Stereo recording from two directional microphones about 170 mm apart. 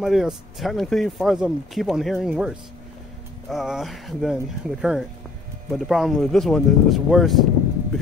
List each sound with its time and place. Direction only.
0.0 s speech: centre (ahead or behind)